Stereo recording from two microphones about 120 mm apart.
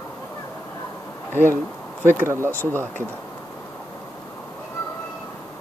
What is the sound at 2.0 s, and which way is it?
Speech, 20° right (ahead or behind).